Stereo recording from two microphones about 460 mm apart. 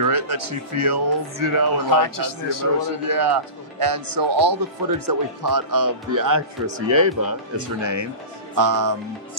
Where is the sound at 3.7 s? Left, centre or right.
Right.